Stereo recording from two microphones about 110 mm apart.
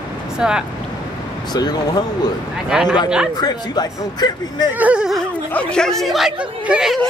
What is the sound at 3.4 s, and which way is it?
Speech, 40° left (ahead or behind).